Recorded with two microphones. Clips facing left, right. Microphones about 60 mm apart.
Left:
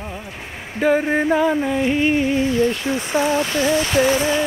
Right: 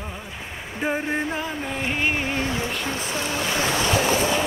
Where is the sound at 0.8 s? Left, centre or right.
Left.